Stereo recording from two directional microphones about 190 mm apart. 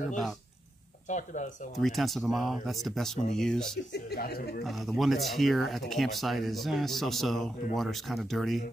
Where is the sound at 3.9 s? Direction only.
60° left (ahead or behind).